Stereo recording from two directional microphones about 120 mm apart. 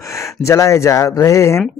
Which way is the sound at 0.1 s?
25° left (ahead or behind).